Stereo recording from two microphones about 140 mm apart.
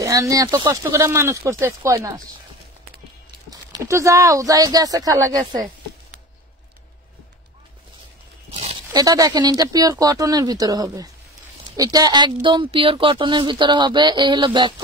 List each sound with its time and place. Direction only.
0.0 s speech: 20° right (ahead or behind)
3.4 s speech: 25° right (ahead or behind)
8.9 s speech: 25° right (ahead or behind)